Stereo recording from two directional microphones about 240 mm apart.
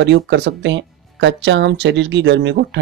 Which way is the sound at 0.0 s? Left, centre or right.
Right.